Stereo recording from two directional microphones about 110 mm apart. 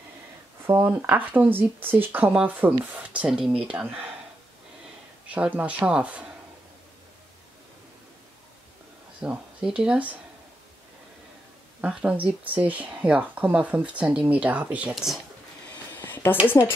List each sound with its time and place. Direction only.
0.8 s speech: 15° right (ahead or behind)
5.3 s speech: 15° right (ahead or behind)
9.2 s speech: 10° right (ahead or behind)
11.8 s speech: 10° right (ahead or behind)
16.0 s a sound: 20° left (ahead or behind)
16.6 s speech: 25° left (ahead or behind)